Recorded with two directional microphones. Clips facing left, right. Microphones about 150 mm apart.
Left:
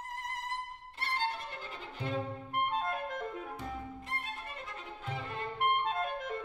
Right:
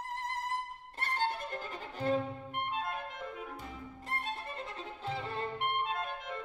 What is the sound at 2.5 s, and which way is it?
Clarinet, 45° left (ahead or behind).